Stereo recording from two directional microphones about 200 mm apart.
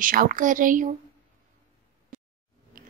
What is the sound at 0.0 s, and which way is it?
Speech, 45° right (ahead or behind).